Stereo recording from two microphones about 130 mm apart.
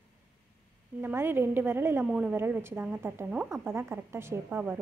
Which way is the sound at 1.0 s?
15° right (ahead or behind).